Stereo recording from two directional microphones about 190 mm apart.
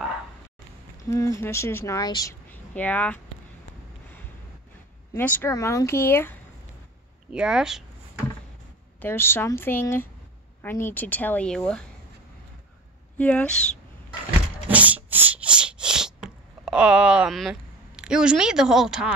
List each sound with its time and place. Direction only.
1.0 s speech: 15° left (ahead or behind)
2.5 s speech: 10° left (ahead or behind)
5.1 s speech: 15° left (ahead or behind)
7.3 s speech: 5° right (ahead or behind)
9.0 s speech: 10° left (ahead or behind)
13.2 s speech: 5° left (ahead or behind)
14.7 s a sound: 10° right (ahead or behind)